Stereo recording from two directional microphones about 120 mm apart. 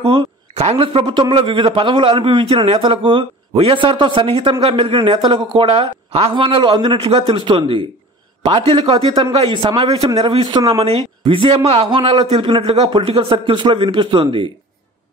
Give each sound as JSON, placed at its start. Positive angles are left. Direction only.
{"t": 0.6, "sound": "a man's voice", "side_deg": -55}
{"t": 10.8, "sound": "a man's voice", "side_deg": -55}
{"t": 13.5, "sound": "a man's voice", "side_deg": -45}